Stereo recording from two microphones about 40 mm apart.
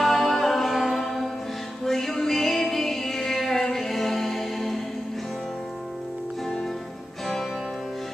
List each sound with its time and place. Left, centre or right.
0.0 s music: centre